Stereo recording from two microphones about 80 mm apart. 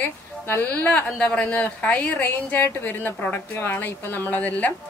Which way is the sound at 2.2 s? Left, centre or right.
Left.